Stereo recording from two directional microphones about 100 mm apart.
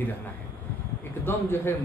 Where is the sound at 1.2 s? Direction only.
20° left (ahead or behind).